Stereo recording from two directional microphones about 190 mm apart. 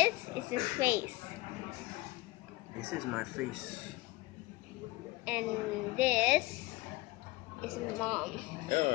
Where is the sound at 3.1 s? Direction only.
5° right (ahead or behind).